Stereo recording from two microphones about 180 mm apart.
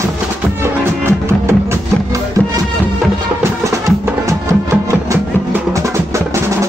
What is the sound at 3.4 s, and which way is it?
Music, 15° right (ahead or behind).